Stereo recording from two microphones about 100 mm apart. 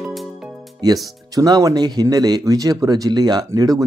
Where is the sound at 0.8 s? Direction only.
40° right (ahead or behind).